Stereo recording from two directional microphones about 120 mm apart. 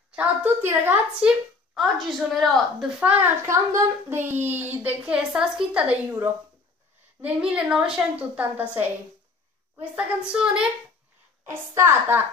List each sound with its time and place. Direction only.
0.1 s a woman's voice: 10° right (ahead or behind)
3.0 s a child's voice: 10° right (ahead or behind)
11.4 s a child's voice: 25° right (ahead or behind)